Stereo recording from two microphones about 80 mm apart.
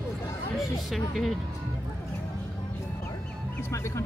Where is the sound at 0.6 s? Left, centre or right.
Centre.